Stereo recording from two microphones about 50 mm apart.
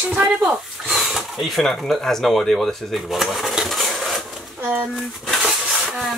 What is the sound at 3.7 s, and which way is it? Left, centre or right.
Dishes, centre.